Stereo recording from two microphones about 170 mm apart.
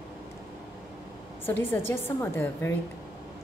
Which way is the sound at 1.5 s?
10° left (ahead or behind).